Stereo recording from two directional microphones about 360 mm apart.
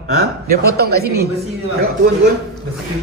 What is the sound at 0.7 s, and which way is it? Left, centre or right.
Speech, right.